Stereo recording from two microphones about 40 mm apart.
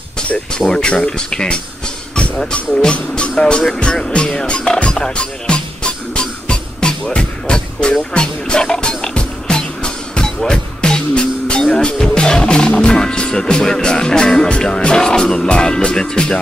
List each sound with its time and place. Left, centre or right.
0.6 s speech: centre
3.8 s music: left
7.1 s speech: left
8.1 s music: left
11.8 s speech: left
12.8 s music: centre
15.4 s speech: left